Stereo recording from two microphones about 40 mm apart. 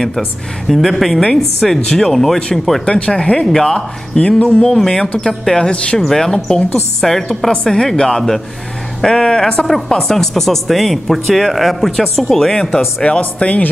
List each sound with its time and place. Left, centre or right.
0.7 s speech: centre
2.8 s speech: left
4.2 s speech: left
9.7 s speech: centre
13.2 s speech: left